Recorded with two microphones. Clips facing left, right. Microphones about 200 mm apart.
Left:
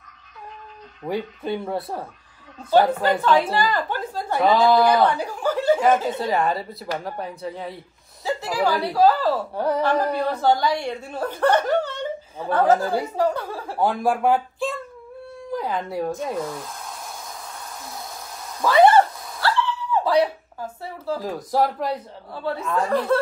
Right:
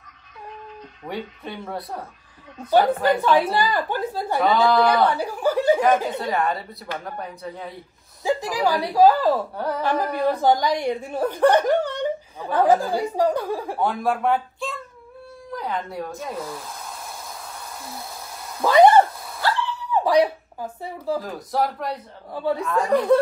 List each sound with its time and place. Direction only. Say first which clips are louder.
1.0 s speech: left 5 dB; centre (ahead or behind)
2.7 s a woman's voice: even; 15° right (ahead or behind)
4.5 s a woman's voice: left 2 dB; centre (ahead or behind)
6.2 s speech: left 2 dB; centre (ahead or behind)
8.2 s a woman's voice: right 1 dB; 15° right (ahead or behind)
13.7 s speech: left 4 dB; centre (ahead or behind)
15.5 s a sound: left 3 dB; centre (ahead or behind)
18.6 s a sound: right 1 dB; 15° right (ahead or behind)
19.4 s dog: left 2 dB; 15° right (ahead or behind)
20.8 s a woman's voice: right 2 dB; 15° right (ahead or behind)
21.2 s speech: left 3 dB; centre (ahead or behind)
22.3 s a woman's voice: right 2 dB; 15° right (ahead or behind)